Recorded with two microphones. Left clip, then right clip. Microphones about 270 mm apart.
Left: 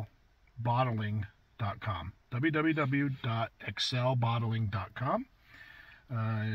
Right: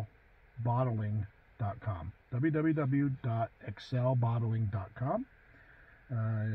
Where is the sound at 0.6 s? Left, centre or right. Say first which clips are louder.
Left 3 dB; left.